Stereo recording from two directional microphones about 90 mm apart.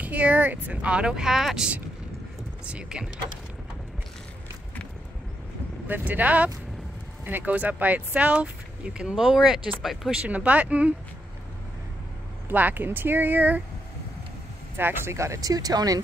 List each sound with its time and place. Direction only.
0.0 s speech: 15° right (ahead or behind)
5.9 s speech: 20° right (ahead or behind); by 10.2 s centre (ahead or behind)
10.2 s speech: 15° right (ahead or behind)
12.4 s speech: 20° right (ahead or behind)
14.8 s speech: 25° right (ahead or behind); by 16.0 s 45° right (ahead or behind)